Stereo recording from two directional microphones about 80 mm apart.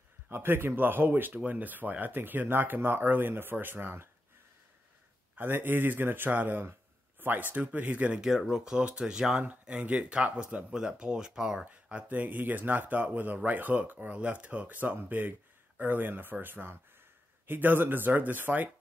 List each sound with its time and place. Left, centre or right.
0.3 s speech: right
5.3 s speech: right
8.3 s speech: centre
11.6 s speech: centre